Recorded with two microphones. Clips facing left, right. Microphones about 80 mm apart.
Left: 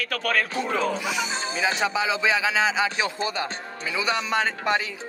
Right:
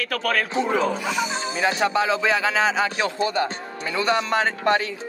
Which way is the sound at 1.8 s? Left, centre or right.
Centre.